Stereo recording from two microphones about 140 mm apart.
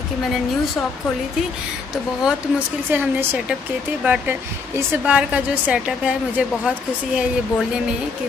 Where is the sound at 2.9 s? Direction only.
10° right (ahead or behind).